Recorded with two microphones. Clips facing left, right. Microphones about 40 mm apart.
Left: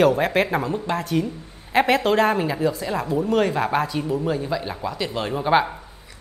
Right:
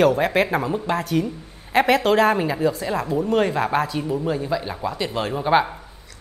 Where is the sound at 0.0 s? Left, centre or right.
Centre.